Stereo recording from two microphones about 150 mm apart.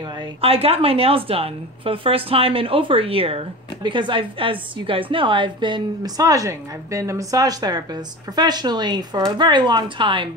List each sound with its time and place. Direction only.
0.0 s a woman's voice: 35° right (ahead or behind)